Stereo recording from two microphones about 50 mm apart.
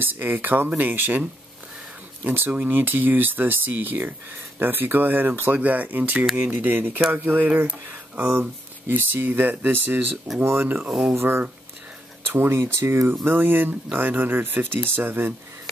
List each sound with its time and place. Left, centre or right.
0.0 s speech: right
2.2 s speech: right
5.6 s speech: right
8.3 s speech: right
10.9 s speech: centre
11.1 s speech: right